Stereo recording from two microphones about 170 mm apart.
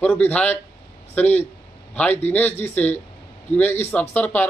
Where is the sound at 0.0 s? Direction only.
5° left (ahead or behind).